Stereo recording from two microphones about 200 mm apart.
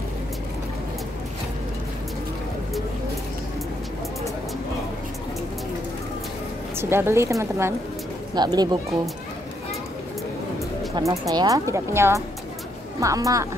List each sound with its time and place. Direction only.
6.8 s speech: 10° right (ahead or behind)
11.0 s speech: 15° right (ahead or behind)